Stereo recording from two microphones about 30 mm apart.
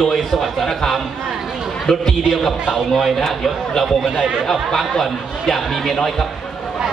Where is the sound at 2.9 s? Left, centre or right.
Centre.